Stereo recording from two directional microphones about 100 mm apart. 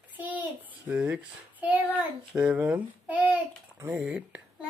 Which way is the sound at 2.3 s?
15° right (ahead or behind).